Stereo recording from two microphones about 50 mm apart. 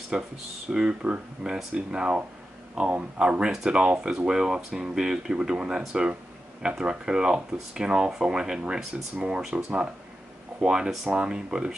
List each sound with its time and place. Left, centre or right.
0.1 s speech: centre